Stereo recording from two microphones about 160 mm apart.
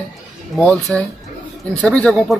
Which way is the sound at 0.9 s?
20° right (ahead or behind).